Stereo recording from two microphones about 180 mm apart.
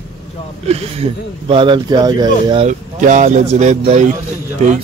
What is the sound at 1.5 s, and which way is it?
Speech, 25° right (ahead or behind).